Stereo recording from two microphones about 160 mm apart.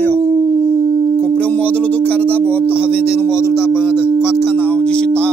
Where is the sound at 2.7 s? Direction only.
10° right (ahead or behind).